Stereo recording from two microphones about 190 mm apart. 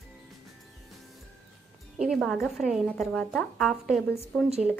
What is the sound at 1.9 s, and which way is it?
Speech, centre (ahead or behind).